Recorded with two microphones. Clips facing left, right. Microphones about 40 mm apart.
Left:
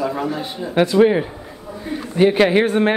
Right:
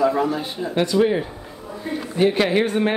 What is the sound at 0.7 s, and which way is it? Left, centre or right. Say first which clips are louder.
A man's voice: left 5 dB; left.